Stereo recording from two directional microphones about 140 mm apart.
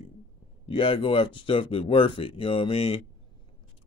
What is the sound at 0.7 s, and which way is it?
Speech, 40° left (ahead or behind).